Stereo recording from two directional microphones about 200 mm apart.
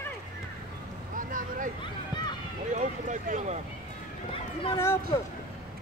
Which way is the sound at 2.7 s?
40° right (ahead or behind).